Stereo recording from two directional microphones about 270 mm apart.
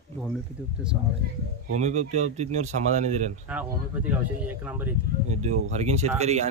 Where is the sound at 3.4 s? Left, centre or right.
Centre.